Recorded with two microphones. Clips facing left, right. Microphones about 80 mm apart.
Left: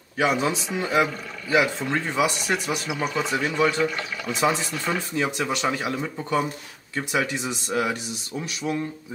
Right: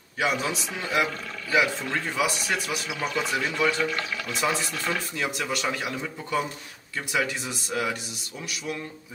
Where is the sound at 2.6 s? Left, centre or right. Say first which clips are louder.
Left 3 dB; centre.